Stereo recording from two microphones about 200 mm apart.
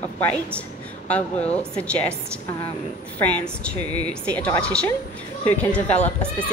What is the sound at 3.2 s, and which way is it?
Speech, 5° left (ahead or behind).